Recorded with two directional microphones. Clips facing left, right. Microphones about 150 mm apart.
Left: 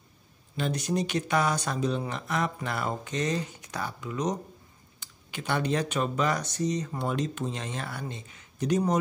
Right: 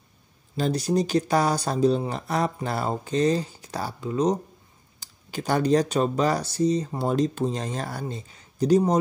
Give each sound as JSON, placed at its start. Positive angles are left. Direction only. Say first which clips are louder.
{"t": 0.6, "sound": "speech", "louder": "right 5 dB", "side_deg": -35}